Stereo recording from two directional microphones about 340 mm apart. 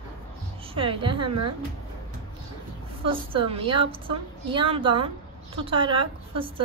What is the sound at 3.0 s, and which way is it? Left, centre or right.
A woman's voice, centre.